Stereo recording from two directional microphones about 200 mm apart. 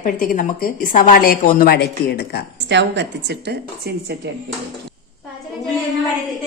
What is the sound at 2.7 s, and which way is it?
A woman's voice, 60° right (ahead or behind).